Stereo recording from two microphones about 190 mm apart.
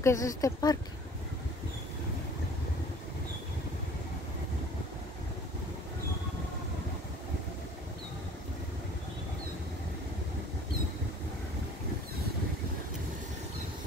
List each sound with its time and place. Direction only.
0.0 s speech: 15° left (ahead or behind)